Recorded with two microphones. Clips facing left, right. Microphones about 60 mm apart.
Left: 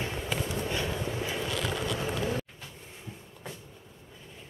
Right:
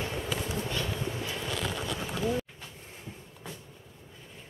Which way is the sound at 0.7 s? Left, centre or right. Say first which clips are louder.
Left 1 dB; centre.